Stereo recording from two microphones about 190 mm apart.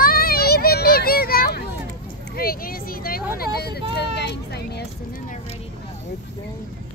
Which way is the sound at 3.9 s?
60° left (ahead or behind).